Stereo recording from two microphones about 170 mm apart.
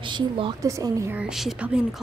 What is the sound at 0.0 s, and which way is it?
A woman's voice, 30° right (ahead or behind).